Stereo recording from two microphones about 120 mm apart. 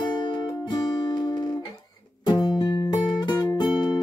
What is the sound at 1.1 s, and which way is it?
Music, 35° left (ahead or behind).